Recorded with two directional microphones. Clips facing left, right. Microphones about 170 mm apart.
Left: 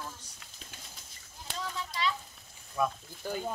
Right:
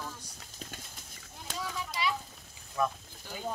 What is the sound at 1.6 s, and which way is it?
Speech, 10° right (ahead or behind).